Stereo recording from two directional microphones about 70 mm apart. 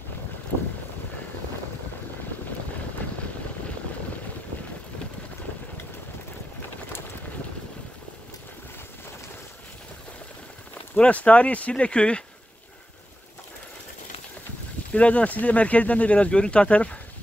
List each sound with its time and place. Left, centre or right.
11.0 s speech: centre
14.9 s speech: centre